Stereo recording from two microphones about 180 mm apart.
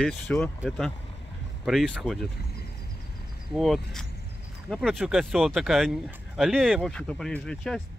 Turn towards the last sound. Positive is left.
turn(degrees=5)  # may be behind; listen again after turning